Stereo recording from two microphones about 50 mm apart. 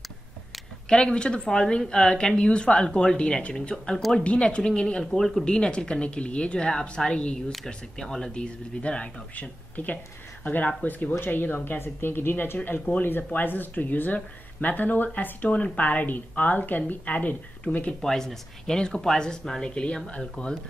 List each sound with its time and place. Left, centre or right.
0.8 s a woman's voice: centre
5.0 s a woman's voice: centre
5.4 s speech: centre
7.6 s a woman's voice: centre; by 17.9 s left
18.0 s a woman's voice: centre